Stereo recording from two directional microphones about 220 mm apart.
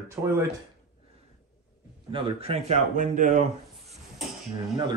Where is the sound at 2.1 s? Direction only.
25° right (ahead or behind).